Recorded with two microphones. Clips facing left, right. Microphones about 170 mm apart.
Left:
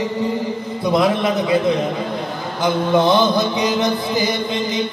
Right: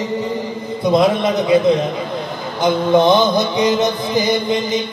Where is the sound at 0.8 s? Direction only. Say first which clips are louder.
Right 3 dB; 20° right (ahead or behind).